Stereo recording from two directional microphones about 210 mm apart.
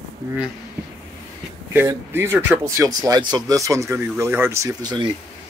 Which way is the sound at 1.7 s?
10° right (ahead or behind).